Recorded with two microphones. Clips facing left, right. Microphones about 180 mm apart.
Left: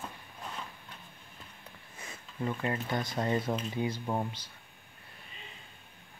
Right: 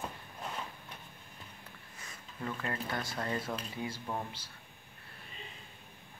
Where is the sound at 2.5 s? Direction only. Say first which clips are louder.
Left 4 dB; 20° left (ahead or behind).